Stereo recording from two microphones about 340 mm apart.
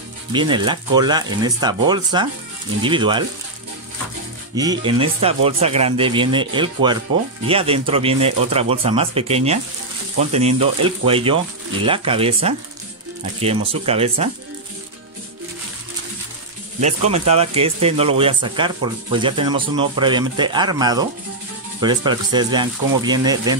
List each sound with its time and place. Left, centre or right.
0.3 s speech: centre
4.6 s speech: centre
16.8 s speech: centre